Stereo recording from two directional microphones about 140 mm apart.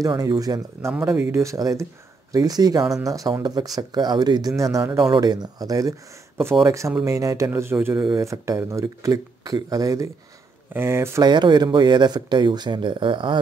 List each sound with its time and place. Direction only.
0.0 s speech: 25° right (ahead or behind)
1.0 s speech: 15° right (ahead or behind)
5.0 s speech: 30° right (ahead or behind)
11.2 s speech: 30° right (ahead or behind)